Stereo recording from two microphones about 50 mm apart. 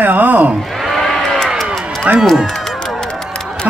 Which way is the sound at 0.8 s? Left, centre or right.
Centre.